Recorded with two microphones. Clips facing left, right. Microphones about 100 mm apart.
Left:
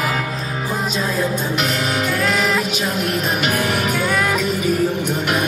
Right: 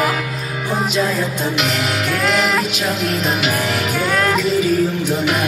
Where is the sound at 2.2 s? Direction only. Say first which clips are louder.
Right 3 dB; 5° right (ahead or behind).